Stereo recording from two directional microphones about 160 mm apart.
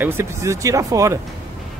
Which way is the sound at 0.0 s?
15° right (ahead or behind).